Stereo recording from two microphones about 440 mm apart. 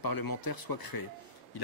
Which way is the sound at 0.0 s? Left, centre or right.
Left.